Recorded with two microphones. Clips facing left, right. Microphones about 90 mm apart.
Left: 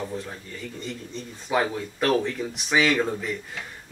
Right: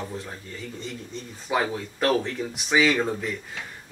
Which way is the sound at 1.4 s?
5° right (ahead or behind).